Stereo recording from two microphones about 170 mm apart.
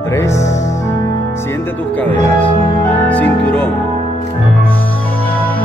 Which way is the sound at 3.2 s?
10° left (ahead or behind).